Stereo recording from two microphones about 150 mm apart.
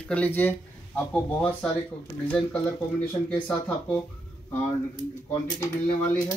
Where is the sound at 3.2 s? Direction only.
5° left (ahead or behind).